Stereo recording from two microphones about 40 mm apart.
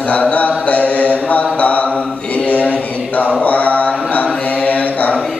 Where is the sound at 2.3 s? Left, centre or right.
Left.